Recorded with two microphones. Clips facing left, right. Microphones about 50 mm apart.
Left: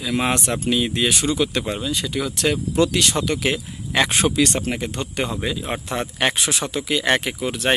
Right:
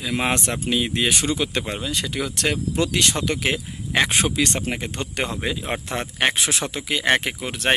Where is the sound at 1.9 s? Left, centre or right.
Right; by 4.2 s centre.